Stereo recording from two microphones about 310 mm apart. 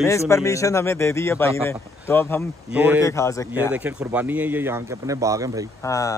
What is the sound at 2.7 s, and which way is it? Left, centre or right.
Speech, centre.